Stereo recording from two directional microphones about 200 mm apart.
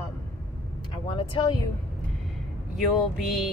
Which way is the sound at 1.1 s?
25° left (ahead or behind).